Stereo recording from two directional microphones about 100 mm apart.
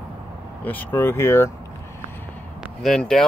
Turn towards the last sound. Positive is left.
turn(degrees=5)  # may be behind; listen again after turning